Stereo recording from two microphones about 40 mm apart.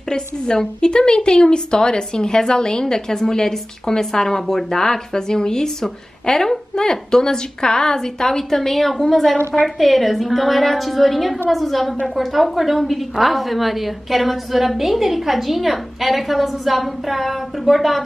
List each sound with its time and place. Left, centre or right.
0.1 s a woman's voice: centre